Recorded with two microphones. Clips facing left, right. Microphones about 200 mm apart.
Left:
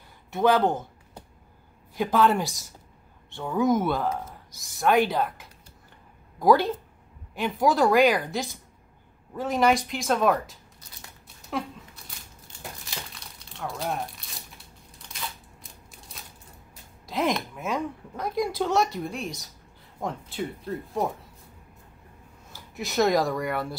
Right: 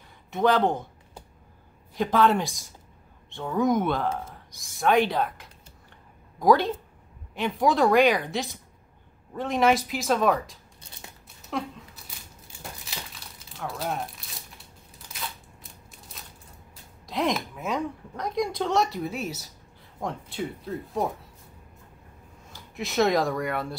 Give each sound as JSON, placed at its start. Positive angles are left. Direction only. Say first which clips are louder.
{"t": 0.3, "sound": "a woman's voice", "louder": "left 1 dB", "side_deg": 5}
{"t": 2.0, "sound": "a woman's voice", "louder": "even", "side_deg": 0}
{"t": 10.8, "sound": "a sound", "louder": "right 4 dB", "side_deg": -25}
{"t": 12.8, "sound": "crumpling", "louder": "left 1 dB", "side_deg": -5}
{"t": 15.9, "sound": "a sound", "louder": "even", "side_deg": 0}
{"t": 17.0, "sound": "a woman's voice", "louder": "even", "side_deg": 0}
{"t": 22.5, "sound": "speech", "louder": "right 1 dB", "side_deg": 0}